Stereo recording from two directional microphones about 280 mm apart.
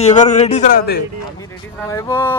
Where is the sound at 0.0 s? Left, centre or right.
Left.